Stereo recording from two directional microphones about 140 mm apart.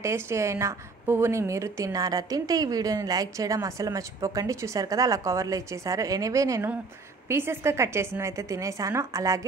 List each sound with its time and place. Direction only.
0.0 s a woman's voice: 20° right (ahead or behind)